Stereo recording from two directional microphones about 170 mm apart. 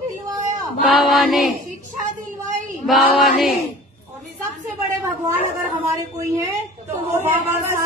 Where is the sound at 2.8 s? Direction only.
Centre (ahead or behind).